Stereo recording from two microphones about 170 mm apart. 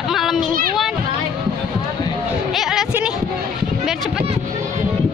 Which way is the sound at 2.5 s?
Centre (ahead or behind).